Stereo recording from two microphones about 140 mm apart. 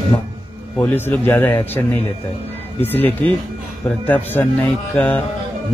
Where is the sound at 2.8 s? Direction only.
15° left (ahead or behind).